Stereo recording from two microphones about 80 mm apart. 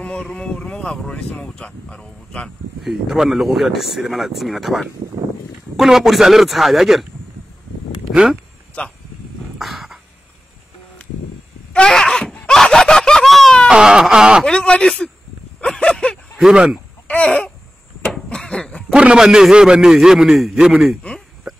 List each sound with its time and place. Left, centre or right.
0.0 s speech: centre
2.8 s speech: centre
8.1 s speech: centre
8.8 s speech: centre
9.6 s a sound: centre
11.7 s groan: centre
13.7 s a man's voice: centre
14.4 s speech: centre
15.6 s a sound: centre
16.3 s a man's voice: centre
17.1 s babbling: centre
18.1 s a sound: centre
18.9 s a man's voice: centre
21.5 s a sound: centre